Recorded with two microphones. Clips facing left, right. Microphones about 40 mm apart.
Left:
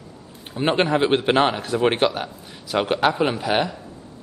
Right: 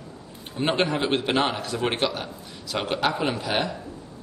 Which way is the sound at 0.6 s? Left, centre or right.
Centre.